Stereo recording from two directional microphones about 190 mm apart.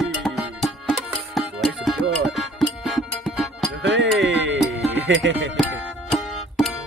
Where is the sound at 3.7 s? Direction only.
70° right (ahead or behind).